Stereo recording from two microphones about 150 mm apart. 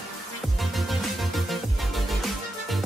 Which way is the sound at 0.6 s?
Centre (ahead or behind).